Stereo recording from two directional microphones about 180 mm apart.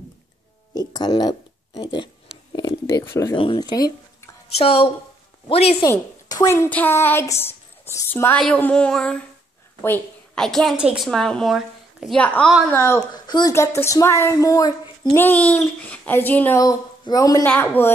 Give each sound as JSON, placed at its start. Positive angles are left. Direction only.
{"t": 0.7, "sound": "a woman's voice", "side_deg": 20}
{"t": 5.9, "sound": "a woman's voice", "side_deg": 20}
{"t": 12.7, "sound": "a woman's voice", "side_deg": 15}